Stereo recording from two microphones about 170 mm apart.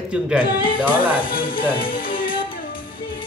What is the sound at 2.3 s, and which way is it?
Music, 30° left (ahead or behind).